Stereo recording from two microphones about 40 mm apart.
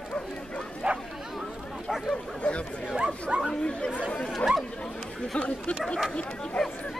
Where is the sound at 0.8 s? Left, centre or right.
Right.